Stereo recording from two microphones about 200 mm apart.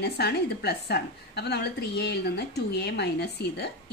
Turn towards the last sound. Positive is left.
turn(degrees=55)  # may be behind; listen again after turning